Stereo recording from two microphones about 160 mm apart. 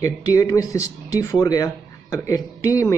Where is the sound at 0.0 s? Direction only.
20° left (ahead or behind).